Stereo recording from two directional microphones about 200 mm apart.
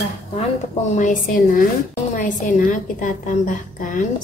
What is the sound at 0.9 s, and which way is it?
A woman's voice, 40° left (ahead or behind).